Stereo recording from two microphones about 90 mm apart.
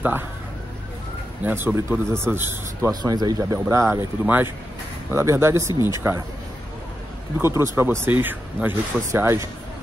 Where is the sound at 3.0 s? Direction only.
45° right (ahead or behind).